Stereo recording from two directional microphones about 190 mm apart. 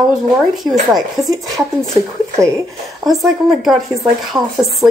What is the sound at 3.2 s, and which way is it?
Speech, centre (ahead or behind).